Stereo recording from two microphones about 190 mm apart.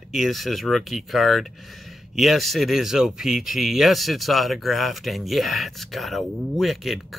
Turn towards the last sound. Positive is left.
turn(degrees=0)  # may be behind; listen again after turning